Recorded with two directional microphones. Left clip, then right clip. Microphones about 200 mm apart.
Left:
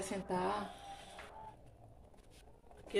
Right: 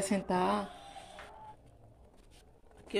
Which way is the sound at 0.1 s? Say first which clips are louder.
Right 6 dB; 55° right (ahead or behind).